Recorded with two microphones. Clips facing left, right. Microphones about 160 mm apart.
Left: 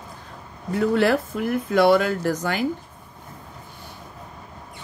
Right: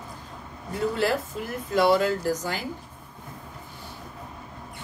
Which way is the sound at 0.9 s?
65° left (ahead or behind).